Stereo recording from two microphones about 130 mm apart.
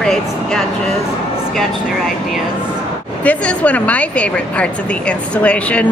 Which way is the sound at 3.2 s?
10° left (ahead or behind).